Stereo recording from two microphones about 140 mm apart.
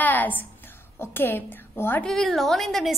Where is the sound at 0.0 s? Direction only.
10° left (ahead or behind).